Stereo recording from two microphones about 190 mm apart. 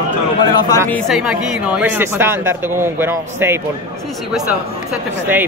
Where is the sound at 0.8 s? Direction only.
Centre (ahead or behind).